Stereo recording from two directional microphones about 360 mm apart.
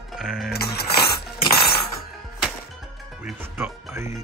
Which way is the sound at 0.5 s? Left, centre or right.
Left.